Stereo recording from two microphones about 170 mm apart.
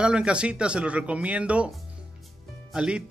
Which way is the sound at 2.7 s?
5° right (ahead or behind).